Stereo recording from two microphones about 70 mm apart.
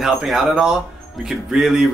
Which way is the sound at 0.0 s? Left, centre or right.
Centre.